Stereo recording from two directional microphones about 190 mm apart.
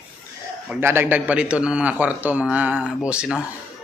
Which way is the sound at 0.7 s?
10° right (ahead or behind).